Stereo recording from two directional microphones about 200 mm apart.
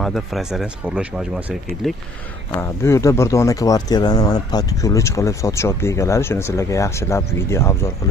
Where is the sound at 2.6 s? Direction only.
15° left (ahead or behind).